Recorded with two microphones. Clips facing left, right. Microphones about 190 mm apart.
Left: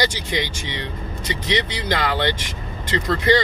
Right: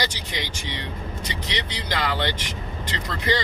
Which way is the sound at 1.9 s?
60° left (ahead or behind).